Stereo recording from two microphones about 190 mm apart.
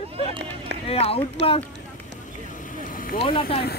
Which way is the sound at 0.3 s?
30° right (ahead or behind).